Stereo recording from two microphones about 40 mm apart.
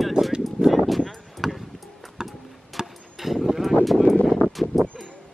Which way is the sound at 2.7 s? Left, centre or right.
Centre.